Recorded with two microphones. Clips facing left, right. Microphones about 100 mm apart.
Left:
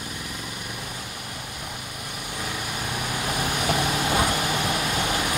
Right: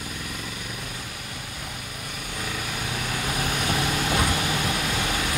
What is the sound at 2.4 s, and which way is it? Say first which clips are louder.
Vehicle: even; 10° left (ahead or behind).